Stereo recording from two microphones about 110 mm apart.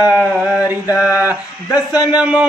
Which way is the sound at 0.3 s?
10° right (ahead or behind).